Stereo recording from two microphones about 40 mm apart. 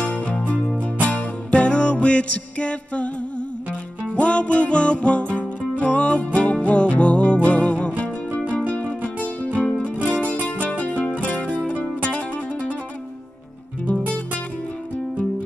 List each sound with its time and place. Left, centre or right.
0.0 s music: left
13.8 s music: left